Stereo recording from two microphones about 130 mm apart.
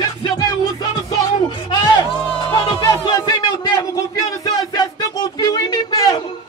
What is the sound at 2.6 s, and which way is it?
Music, 35° left (ahead or behind).